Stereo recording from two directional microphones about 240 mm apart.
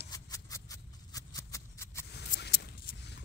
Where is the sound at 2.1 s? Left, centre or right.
Left.